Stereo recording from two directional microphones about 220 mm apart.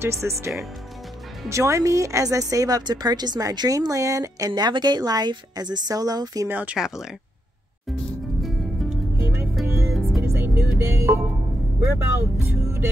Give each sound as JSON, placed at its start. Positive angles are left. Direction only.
{"t": 0.0, "sound": "a woman's voice", "side_deg": -10}
{"t": 1.5, "sound": "a woman's voice", "side_deg": -15}
{"t": 8.4, "sound": "music", "side_deg": 0}
{"t": 12.6, "sound": "music", "side_deg": -10}